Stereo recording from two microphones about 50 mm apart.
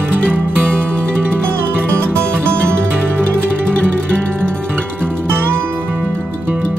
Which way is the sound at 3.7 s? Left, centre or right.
Left.